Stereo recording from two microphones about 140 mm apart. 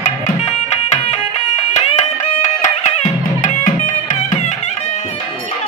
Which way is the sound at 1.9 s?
55° left (ahead or behind).